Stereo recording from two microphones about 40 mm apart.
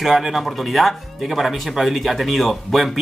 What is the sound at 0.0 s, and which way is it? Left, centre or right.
Speech, centre.